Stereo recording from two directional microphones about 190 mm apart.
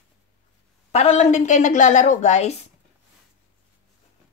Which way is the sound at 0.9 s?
35° left (ahead or behind).